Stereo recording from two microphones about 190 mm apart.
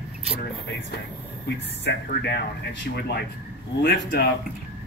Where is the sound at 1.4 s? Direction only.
65° left (ahead or behind).